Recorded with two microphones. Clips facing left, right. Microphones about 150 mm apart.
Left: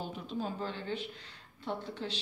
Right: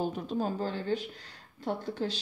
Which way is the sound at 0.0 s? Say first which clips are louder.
Right 6 dB; 40° right (ahead or behind).